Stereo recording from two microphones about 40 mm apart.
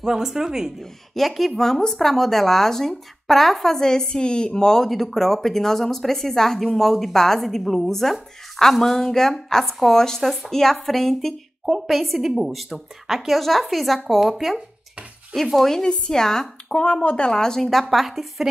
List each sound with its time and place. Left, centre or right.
0.0 s speech: centre
0.7 s a woman's voice: centre
3.7 s a woman's voice: centre
15.4 s a woman's voice: centre
16.7 s speech: left
17.6 s a woman's voice: centre